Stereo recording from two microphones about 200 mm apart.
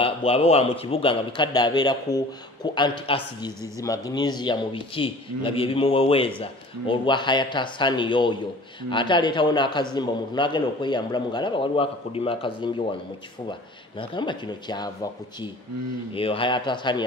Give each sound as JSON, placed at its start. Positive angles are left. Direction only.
{"t": 0.0, "sound": "a man's voice", "side_deg": 30}
{"t": 16.1, "sound": "a man's voice", "side_deg": 25}